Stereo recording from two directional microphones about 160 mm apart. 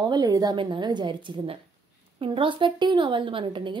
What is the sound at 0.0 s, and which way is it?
A woman's voice, 25° right (ahead or behind).